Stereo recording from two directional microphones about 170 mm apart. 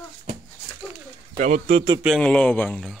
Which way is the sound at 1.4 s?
40° right (ahead or behind).